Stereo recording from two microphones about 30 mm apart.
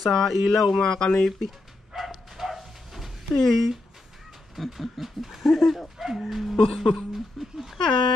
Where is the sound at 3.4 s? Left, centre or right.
Centre.